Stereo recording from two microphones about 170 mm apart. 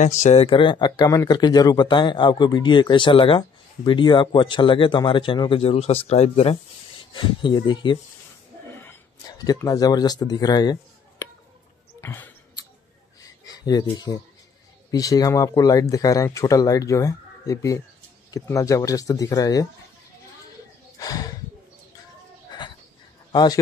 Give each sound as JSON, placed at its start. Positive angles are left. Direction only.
{"t": 0.0, "sound": "speech", "side_deg": 45}
{"t": 9.5, "sound": "speech", "side_deg": 20}
{"t": 12.0, "sound": "basketball bounce", "side_deg": 15}
{"t": 13.2, "sound": "a sound", "side_deg": 20}
{"t": 14.9, "sound": "speech", "side_deg": 20}
{"t": 21.0, "sound": "a sound", "side_deg": 20}
{"t": 23.3, "sound": "a man's voice", "side_deg": 25}